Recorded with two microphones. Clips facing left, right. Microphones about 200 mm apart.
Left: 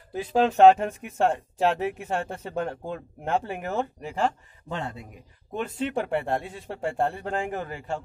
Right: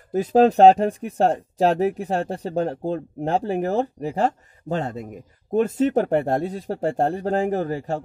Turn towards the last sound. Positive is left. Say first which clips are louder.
# right 8 dB
turn(degrees=-40)  # may be behind; listen again after turning